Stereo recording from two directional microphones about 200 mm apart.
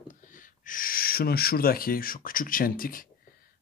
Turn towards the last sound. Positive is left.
turn(degrees=45)  # may be behind; listen again after turning